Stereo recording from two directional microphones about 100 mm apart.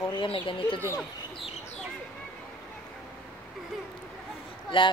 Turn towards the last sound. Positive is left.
turn(degrees=60)  # may be behind; listen again after turning